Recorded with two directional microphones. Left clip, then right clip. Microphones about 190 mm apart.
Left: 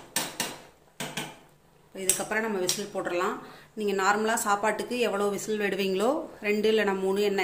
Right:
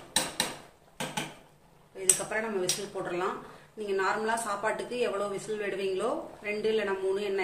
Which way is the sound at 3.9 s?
50° left (ahead or behind).